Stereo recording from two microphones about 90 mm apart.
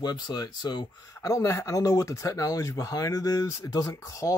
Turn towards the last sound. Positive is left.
turn(degrees=35)  # may be behind; listen again after turning